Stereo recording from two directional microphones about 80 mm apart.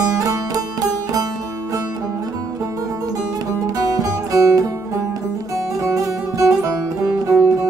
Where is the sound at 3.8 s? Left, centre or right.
Right.